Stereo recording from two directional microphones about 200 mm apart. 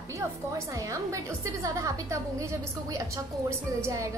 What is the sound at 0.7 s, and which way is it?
A woman's voice, 15° right (ahead or behind).